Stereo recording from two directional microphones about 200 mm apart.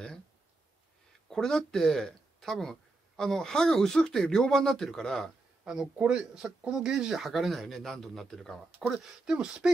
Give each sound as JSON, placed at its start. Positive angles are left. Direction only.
{"t": 1.3, "sound": "speech", "side_deg": 5}